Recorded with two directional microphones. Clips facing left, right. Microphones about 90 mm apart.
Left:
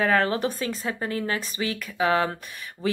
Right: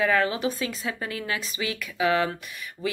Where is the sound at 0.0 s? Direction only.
40° left (ahead or behind).